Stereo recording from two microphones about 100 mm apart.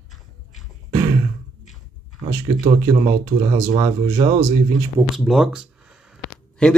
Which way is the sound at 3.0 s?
70° right (ahead or behind).